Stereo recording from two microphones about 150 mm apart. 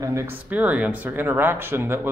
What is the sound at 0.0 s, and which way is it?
A man's voice, 20° right (ahead or behind).